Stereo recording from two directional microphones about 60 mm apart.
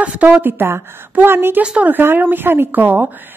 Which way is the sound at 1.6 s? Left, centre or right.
Centre.